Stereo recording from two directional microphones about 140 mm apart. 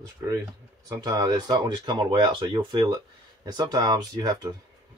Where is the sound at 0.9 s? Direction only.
25° right (ahead or behind).